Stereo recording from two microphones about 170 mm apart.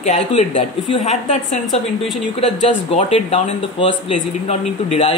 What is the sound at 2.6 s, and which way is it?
Speech, 35° left (ahead or behind).